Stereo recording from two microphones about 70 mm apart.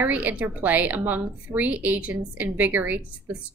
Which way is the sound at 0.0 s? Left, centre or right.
Right.